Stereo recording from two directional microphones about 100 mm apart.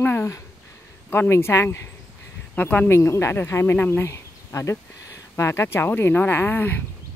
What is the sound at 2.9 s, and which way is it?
Speech, 25° left (ahead or behind).